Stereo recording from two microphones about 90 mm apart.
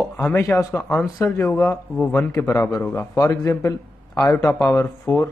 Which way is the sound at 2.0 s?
15° left (ahead or behind).